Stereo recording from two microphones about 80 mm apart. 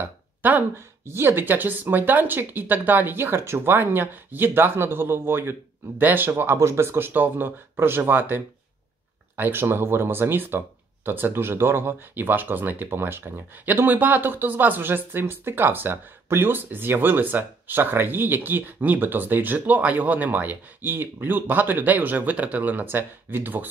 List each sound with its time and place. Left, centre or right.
0.0 s burping: right
1.0 s speech: right
9.4 s speech: right